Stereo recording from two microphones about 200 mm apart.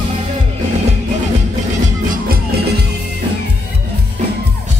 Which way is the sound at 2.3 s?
50° right (ahead or behind).